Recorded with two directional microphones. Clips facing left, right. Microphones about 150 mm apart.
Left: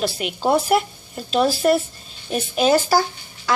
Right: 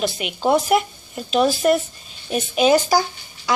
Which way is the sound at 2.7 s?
15° right (ahead or behind).